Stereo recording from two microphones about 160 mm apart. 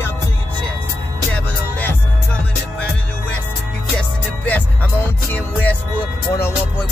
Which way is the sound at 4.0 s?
10° left (ahead or behind).